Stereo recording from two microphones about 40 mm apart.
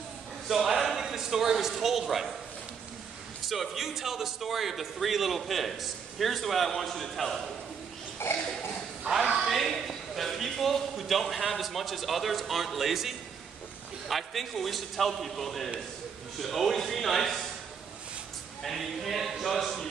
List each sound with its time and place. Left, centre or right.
0.7 s a sound: centre
1.0 s speech: centre
3.4 s a man's voice: centre
8.2 s a sound: left
9.3 s a man's voice: centre
18.6 s a man's voice: centre